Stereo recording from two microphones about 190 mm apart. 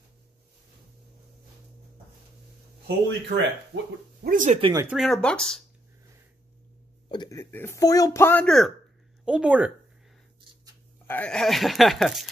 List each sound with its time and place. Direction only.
3.3 s speech: 65° right (ahead or behind)
4.3 s speech: 45° right (ahead or behind)
4.6 s speech: 25° right (ahead or behind)
4.8 s speech: centre (ahead or behind)
7.1 s speech: 20° left (ahead or behind); by 9.7 s 5° right (ahead or behind)
11.1 s speech: 5° left (ahead or behind)